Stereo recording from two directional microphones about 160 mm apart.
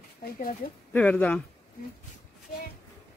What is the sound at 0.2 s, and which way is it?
Speech, 65° left (ahead or behind).